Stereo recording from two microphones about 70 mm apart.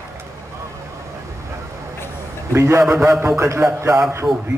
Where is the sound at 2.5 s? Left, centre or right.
Right.